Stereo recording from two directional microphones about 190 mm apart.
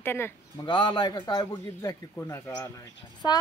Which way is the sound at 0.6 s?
25° left (ahead or behind).